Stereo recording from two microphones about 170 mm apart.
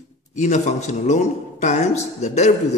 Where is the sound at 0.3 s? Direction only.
45° left (ahead or behind).